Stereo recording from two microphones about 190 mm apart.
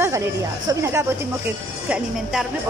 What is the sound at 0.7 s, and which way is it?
Speech, 15° right (ahead or behind).